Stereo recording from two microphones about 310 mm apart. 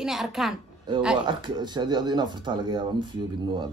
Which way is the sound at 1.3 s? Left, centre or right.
Centre.